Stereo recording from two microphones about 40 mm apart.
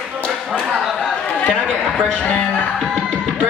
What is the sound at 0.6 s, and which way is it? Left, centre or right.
Speech, centre.